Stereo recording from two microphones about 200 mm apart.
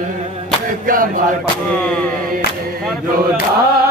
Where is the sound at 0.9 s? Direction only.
45° right (ahead or behind).